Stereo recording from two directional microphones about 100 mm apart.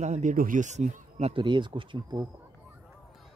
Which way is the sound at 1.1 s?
90° right.